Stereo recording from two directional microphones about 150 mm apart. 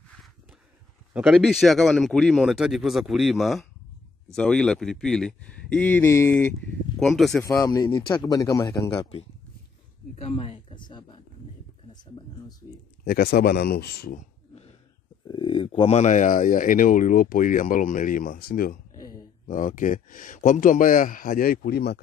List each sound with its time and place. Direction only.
1.1 s speech: centre (ahead or behind)
7.0 s speech: centre (ahead or behind)
7.4 s speech: 20° left (ahead or behind)
13.0 s speech: 90° left
15.2 s speech: 35° left (ahead or behind); by 18.8 s 85° left
18.9 s a sound: 25° left (ahead or behind)
19.4 s speech: 60° left (ahead or behind); by 22.0 s 90° left